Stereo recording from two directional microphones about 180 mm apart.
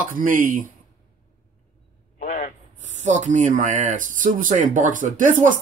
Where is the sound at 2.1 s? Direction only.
50° left (ahead or behind).